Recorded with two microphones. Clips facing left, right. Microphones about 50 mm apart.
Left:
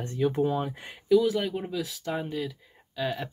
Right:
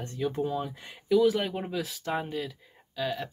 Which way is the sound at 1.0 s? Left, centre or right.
Centre.